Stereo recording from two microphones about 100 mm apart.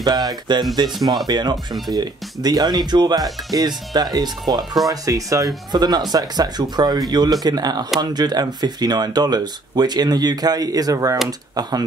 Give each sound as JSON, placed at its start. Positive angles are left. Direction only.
{"t": 0.0, "sound": "speech", "side_deg": -40}